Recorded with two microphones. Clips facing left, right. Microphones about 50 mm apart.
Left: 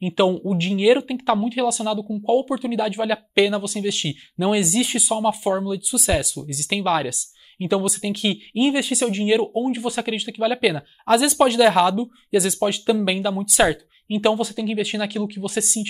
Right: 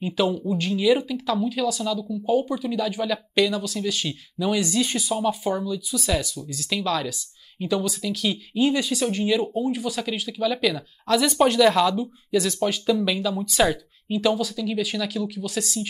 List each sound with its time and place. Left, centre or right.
0.0 s speech: centre
4.6 s speech: centre
11.1 s speech: centre; by 15.9 s left